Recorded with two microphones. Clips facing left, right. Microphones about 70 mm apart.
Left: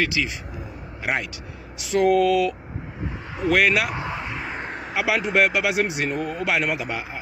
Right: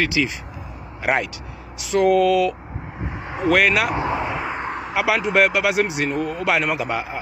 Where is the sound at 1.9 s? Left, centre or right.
Left.